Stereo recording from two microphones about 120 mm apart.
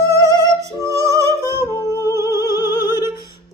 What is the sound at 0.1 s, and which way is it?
Music, 25° right (ahead or behind).